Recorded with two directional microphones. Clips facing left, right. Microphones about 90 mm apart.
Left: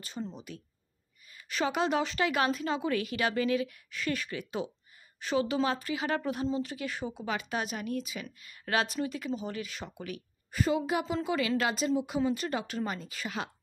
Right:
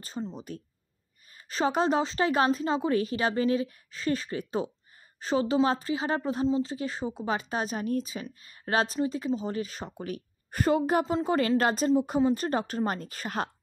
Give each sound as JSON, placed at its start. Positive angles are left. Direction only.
{"t": 0.0, "sound": "speech", "side_deg": -35}